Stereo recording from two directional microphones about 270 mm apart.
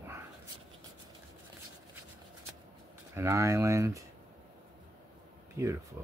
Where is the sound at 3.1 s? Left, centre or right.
Centre.